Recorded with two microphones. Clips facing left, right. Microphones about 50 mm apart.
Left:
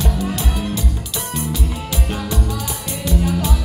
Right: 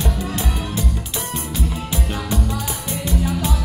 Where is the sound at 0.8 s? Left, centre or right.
Right.